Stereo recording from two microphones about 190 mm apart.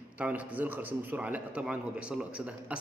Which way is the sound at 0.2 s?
10° right (ahead or behind).